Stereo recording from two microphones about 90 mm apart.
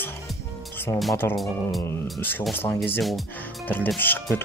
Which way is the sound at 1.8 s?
25° left (ahead or behind).